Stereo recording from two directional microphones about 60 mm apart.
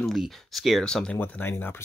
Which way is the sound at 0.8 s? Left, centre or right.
Centre.